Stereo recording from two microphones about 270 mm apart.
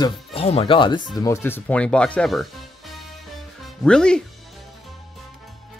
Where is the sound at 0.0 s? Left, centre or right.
Left; by 2.4 s centre.